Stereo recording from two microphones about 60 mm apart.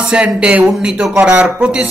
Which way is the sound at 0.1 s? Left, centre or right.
Centre.